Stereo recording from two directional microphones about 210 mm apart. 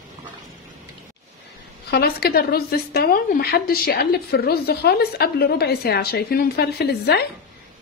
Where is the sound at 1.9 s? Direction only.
50° left (ahead or behind).